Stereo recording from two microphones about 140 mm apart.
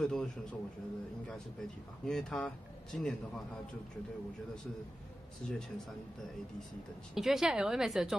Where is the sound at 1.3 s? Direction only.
5° left (ahead or behind).